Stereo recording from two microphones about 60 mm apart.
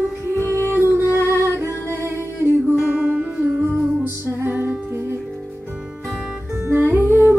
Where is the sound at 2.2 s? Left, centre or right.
Right.